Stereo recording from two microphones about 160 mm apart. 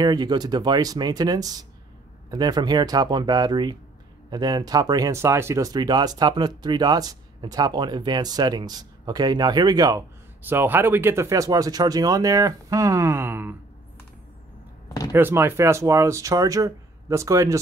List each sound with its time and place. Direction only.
0.0 s speech: 25° right (ahead or behind)
15.1 s speech: 15° right (ahead or behind)